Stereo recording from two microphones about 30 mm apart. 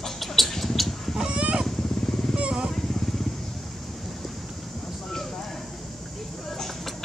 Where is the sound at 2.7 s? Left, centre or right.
Centre.